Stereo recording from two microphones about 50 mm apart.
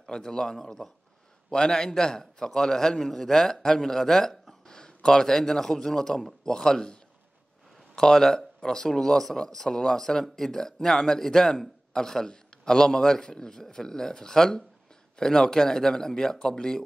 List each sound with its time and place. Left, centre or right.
0.0 s speech: centre